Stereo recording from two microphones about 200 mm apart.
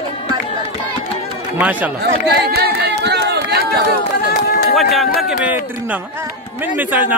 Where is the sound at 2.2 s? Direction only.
55° right (ahead or behind).